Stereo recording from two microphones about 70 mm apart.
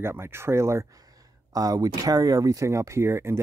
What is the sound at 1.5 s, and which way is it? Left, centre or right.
Speech, right.